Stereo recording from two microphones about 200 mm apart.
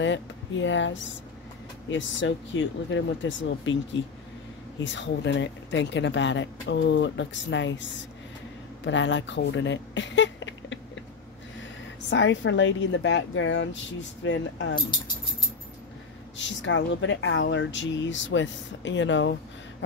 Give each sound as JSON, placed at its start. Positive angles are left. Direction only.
{"t": 0.0, "sound": "speech", "side_deg": 65}
{"t": 8.8, "sound": "speech", "side_deg": 65}
{"t": 12.1, "sound": "speech", "side_deg": 65}
{"t": 16.3, "sound": "speech", "side_deg": 65}